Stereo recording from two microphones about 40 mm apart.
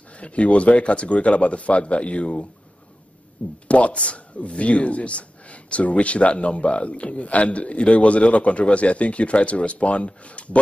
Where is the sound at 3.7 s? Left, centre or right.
Left.